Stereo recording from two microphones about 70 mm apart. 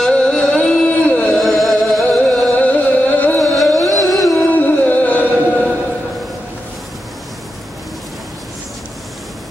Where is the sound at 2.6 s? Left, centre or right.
Left.